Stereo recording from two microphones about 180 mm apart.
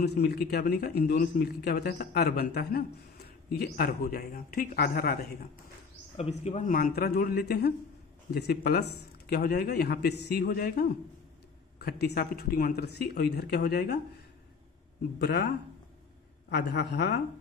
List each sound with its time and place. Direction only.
0.0 s a man's voice: 65° left (ahead or behind)
6.4 s a man's voice: 45° left (ahead or behind); by 13.9 s 65° left (ahead or behind)
15.1 s a man's voice: 65° left (ahead or behind)